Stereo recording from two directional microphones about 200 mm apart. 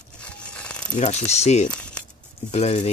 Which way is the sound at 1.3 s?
35° left (ahead or behind).